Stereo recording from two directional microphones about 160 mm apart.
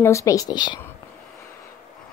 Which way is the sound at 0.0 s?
20° left (ahead or behind).